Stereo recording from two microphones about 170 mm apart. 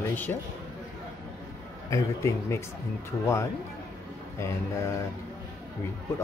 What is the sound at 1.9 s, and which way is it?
Speech, 15° left (ahead or behind).